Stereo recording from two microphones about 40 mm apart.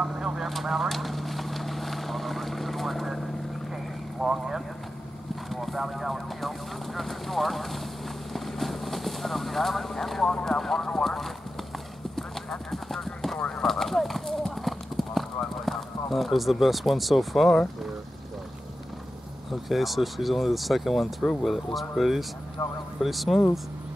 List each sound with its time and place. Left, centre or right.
0.0 s vehicle: centre
0.5 s vehicle: centre
4.2 s speech: centre
8.3 s vehicle: centre
10.2 s speech: centre
12.2 s clip-clop: centre
13.6 s horse: centre
14.6 s clip-clop: centre
19.7 s speech: centre
22.6 s speech: left
22.9 s speech: centre